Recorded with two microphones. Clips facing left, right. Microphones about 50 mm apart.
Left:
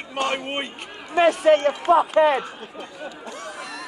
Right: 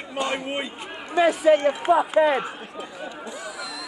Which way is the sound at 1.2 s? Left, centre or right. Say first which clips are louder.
Left 1 dB; left.